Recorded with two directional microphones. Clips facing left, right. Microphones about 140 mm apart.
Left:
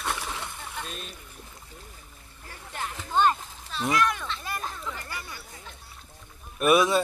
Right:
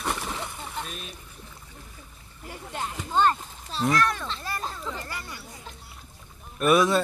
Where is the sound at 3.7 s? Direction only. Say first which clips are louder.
Right 1 dB; 35° right (ahead or behind).